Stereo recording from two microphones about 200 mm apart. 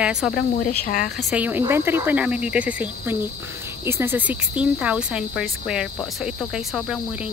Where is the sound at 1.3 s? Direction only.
10° right (ahead or behind).